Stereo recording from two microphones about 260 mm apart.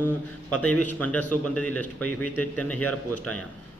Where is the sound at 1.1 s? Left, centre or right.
Centre.